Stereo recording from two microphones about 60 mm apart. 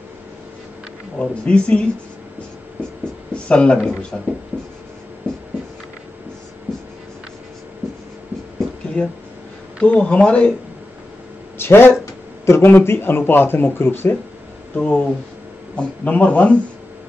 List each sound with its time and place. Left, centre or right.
1.1 s speech: centre
3.4 s speech: centre
9.0 s speech: left
11.5 s a sound: left
12.6 s speech: left
14.8 s speech: left